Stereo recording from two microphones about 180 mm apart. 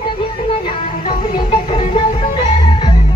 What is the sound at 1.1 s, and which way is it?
Music, 30° left (ahead or behind).